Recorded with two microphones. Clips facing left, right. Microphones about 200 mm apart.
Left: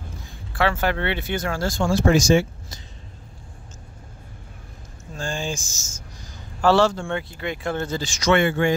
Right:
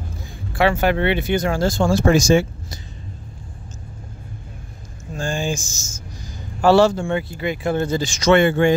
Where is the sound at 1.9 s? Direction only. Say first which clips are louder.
Right 1 dB; 50° right (ahead or behind).